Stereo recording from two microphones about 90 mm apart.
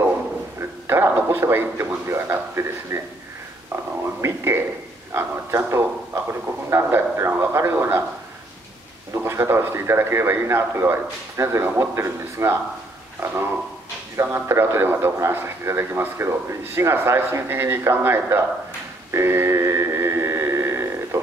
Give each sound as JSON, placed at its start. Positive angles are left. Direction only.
{"t": 0.6, "sound": "a man's voice", "side_deg": -30}
{"t": 3.7, "sound": "a sound", "side_deg": -30}
{"t": 4.2, "sound": "a man's voice", "side_deg": -30}
{"t": 5.7, "sound": "a man's voice", "side_deg": -30}
{"t": 9.1, "sound": "a man's voice", "side_deg": -30}
{"t": 19.1, "sound": "a sound", "side_deg": -30}